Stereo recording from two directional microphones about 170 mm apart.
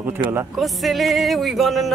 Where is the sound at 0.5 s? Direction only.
Centre (ahead or behind).